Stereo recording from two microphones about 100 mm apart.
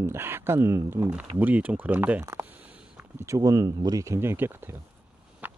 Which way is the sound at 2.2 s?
30° right (ahead or behind).